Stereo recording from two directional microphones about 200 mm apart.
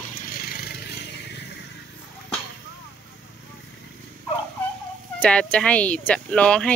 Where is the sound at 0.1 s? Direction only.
45° left (ahead or behind).